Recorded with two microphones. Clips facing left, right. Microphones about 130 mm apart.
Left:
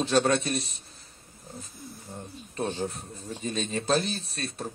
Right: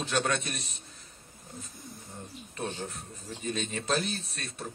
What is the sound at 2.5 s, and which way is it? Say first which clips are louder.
Speech: left 6 dB; 35° left (ahead or behind).